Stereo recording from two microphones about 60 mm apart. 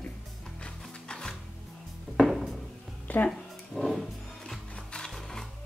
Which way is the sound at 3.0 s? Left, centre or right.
Left.